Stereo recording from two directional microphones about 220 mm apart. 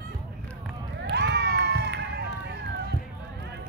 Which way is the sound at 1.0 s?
50° right (ahead or behind).